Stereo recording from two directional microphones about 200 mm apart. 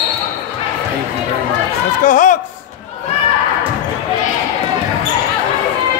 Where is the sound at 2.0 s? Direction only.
40° left (ahead or behind).